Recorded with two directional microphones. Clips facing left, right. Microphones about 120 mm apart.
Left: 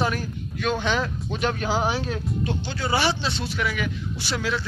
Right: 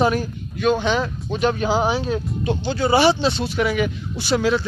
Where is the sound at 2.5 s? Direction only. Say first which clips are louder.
Right 10 dB; 25° right (ahead or behind).